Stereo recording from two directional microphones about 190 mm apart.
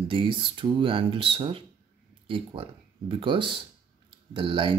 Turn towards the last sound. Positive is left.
turn(degrees=-25)  # may be behind; listen again after turning